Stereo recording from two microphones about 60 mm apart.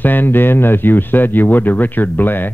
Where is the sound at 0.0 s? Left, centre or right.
Left.